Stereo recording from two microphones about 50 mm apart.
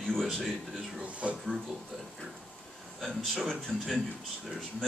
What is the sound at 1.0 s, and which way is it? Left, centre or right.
Speech, right.